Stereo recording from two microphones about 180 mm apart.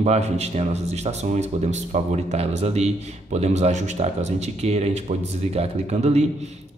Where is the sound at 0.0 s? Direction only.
35° right (ahead or behind).